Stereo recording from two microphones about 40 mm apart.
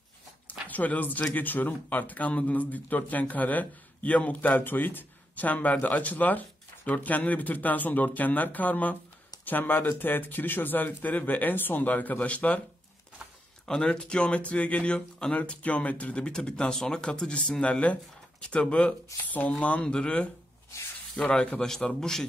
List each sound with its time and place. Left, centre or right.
0.5 s a sound: left
1.3 s a man's voice: left
9.4 s a man's voice: left
13.7 s speech: left
15.0 s speech: centre
15.3 s speech: left
19.8 s speech: left
21.5 s a man's voice: centre